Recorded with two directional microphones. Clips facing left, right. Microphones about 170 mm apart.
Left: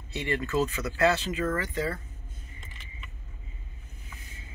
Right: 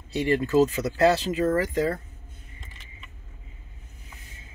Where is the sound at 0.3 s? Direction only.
35° right (ahead or behind).